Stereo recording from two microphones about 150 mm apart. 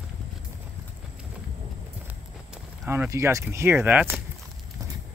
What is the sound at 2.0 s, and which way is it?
Walk, 10° right (ahead or behind).